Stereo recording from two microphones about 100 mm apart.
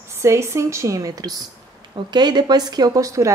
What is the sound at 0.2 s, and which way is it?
A woman's voice, 25° right (ahead or behind).